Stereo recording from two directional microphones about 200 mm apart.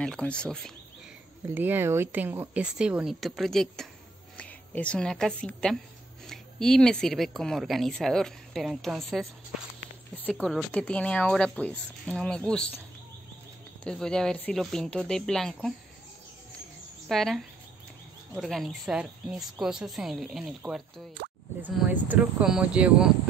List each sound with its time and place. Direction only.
0.0 s speech: 5° left (ahead or behind)
1.5 s a woman's voice: 10° right (ahead or behind)
13.8 s speech: 5° left (ahead or behind)
17.1 s speech: centre (ahead or behind)
21.2 s plop: 55° right (ahead or behind)
21.6 s speech: 10° right (ahead or behind)